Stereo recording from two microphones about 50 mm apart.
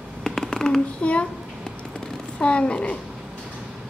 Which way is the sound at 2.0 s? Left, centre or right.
Left.